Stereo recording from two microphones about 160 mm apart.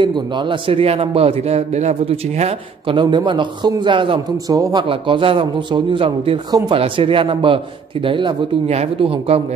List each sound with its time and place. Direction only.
0.0 s a man's voice: 30° right (ahead or behind)
4.8 s a man's voice: 30° right (ahead or behind)